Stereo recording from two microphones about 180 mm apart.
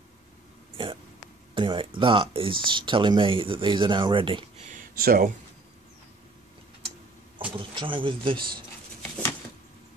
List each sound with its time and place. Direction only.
1.5 s speech: 30° right (ahead or behind)
4.6 s speech: 50° right (ahead or behind)
7.5 s speech: 30° right (ahead or behind)